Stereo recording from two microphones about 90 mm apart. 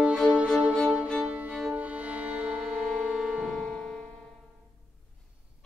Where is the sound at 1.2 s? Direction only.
15° right (ahead or behind); by 3.8 s centre (ahead or behind).